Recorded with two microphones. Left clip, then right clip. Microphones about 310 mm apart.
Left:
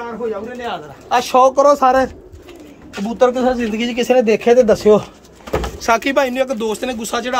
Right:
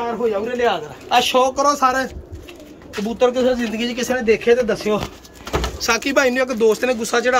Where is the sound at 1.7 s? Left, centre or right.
Left.